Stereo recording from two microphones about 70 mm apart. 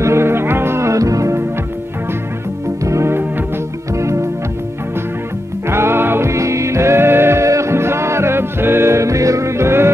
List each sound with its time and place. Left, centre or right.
0.0 s music: right
2.8 s music: right
5.7 s music: right